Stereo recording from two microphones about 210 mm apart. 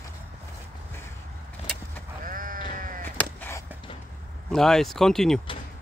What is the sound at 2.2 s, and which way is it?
Sheep, 40° right (ahead or behind).